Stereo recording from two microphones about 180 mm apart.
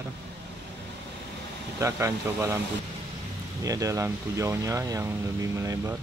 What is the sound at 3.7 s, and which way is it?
Speech, 20° right (ahead or behind).